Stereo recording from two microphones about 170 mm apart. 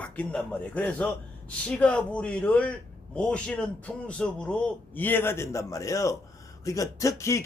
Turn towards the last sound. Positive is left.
turn(degrees=15)  # may be behind; listen again after turning